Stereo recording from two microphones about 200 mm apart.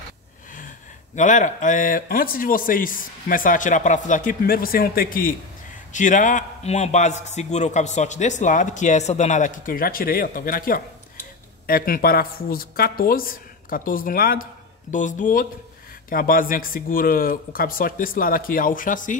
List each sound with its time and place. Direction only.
1.1 s a man's voice: 40° left (ahead or behind)